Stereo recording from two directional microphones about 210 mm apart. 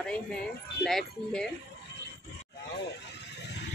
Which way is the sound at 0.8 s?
Centre (ahead or behind).